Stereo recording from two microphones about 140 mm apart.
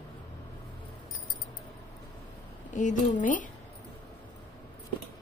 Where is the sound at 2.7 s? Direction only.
60° left (ahead or behind).